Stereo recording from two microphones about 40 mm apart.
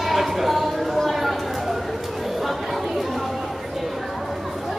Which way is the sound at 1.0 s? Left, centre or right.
Centre.